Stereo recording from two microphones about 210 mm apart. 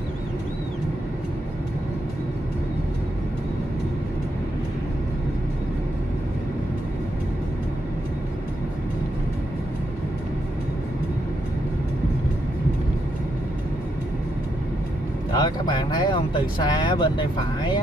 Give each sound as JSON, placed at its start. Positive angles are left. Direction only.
{"t": 15.3, "sound": "speech", "side_deg": 20}